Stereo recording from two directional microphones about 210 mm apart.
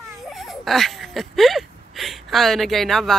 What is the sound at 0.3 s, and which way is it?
Speech, centre (ahead or behind).